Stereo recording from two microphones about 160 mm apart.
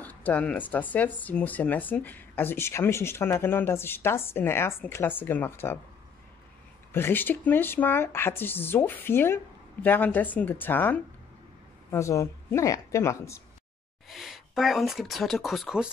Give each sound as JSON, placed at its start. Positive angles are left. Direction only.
{"t": 0.0, "sound": "speech", "side_deg": 10}
{"t": 6.9, "sound": "speech", "side_deg": 15}
{"t": 14.0, "sound": "speech", "side_deg": 0}